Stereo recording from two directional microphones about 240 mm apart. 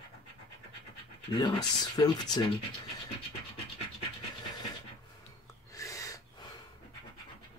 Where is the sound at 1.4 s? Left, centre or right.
Centre.